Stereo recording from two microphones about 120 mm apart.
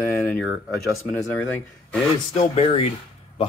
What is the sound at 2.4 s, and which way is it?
Speech, 55° left (ahead or behind).